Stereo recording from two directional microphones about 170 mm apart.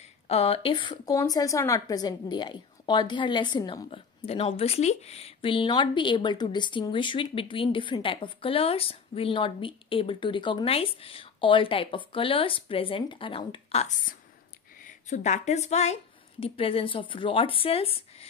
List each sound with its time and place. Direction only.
0.3 s a woman's voice: 35° left (ahead or behind)